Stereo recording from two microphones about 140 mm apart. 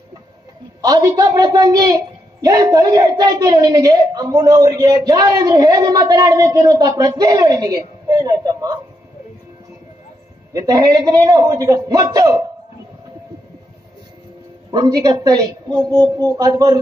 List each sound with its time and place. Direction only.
0.7 s a woman's voice: 25° right (ahead or behind)
10.5 s a woman's voice: 25° right (ahead or behind)
14.7 s a woman's voice: 30° right (ahead or behind)